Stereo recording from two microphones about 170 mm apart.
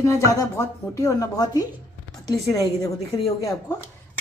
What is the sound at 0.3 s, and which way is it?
A woman's voice, 20° left (ahead or behind).